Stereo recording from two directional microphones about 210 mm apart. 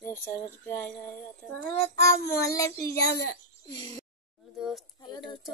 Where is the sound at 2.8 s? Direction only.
50° left (ahead or behind).